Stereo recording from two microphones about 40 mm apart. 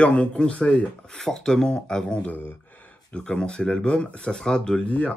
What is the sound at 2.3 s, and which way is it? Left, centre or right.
Speech, left.